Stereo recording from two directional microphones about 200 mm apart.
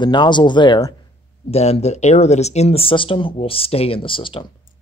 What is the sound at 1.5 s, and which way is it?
Speech, 30° left (ahead or behind).